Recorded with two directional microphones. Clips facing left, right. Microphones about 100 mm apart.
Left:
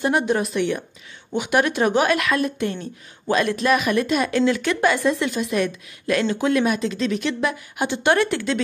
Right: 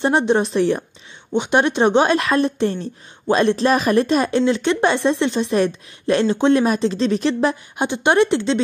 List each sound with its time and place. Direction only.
0.0 s speech: 25° right (ahead or behind)
7.8 s speech: 20° right (ahead or behind)